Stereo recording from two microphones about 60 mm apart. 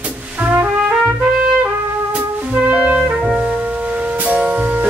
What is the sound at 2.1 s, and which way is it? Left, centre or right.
Music, right.